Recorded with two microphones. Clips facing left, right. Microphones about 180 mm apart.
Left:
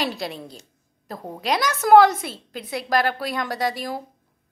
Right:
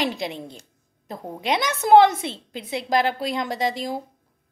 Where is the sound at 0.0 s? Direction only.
20° right (ahead or behind).